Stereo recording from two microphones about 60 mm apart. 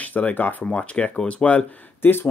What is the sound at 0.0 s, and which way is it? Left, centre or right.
Speech, left.